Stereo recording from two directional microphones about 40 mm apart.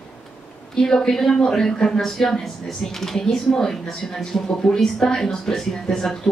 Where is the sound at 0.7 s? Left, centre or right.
Centre.